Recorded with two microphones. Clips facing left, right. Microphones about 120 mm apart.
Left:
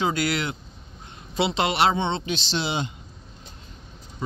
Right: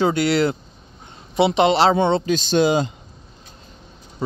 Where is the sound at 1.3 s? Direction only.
20° right (ahead or behind); by 2.9 s 45° right (ahead or behind).